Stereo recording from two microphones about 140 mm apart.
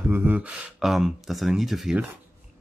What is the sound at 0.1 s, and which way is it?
Speech, 15° right (ahead or behind).